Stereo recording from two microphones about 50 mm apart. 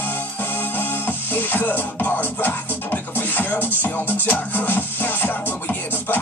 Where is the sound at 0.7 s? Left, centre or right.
Left.